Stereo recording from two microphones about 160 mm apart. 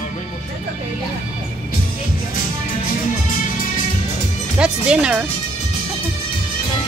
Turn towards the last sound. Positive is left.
turn(degrees=-5)  # may be behind; listen again after turning